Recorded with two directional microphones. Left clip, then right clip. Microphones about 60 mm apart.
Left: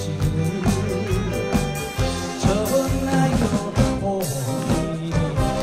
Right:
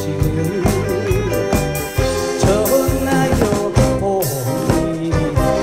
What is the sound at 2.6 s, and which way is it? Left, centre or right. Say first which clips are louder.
Music: right 6 dB; right.